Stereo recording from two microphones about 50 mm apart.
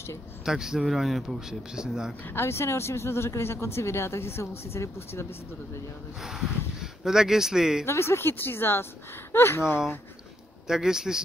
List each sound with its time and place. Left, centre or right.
0.5 s speech: centre
2.2 s speech: left
6.2 s speech: centre
7.8 s speech: left
10.7 s speech: centre